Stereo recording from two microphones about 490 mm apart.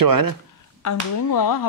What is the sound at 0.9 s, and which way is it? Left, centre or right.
Speech, left.